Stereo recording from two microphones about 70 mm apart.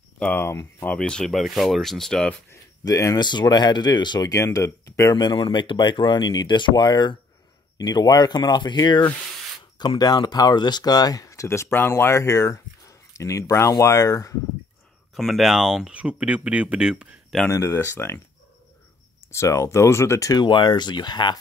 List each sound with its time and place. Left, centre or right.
0.4 s speech: left
0.9 s speech: centre
1.3 s speech: centre
2.8 s speech: left
3.2 s speech: left
4.3 s speech: left
5.1 s speech: left
7.7 s speech: left
15.1 s speech: centre
17.5 s speech: left
19.3 s speech: left